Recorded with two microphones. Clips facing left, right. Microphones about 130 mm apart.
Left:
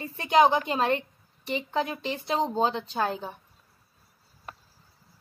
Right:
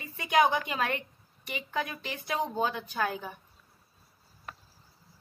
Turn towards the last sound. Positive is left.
turn(degrees=30)  # may be behind; listen again after turning